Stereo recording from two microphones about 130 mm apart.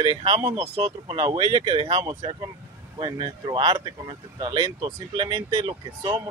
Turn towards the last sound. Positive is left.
turn(degrees=-35)  # may be behind; listen again after turning